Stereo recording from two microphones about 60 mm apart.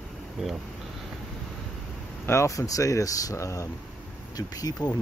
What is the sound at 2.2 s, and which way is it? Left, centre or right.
Speech, left.